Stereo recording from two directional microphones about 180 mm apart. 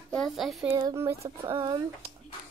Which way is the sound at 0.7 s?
15° right (ahead or behind).